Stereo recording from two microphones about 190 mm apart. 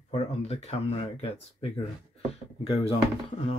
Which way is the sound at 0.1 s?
35° left (ahead or behind).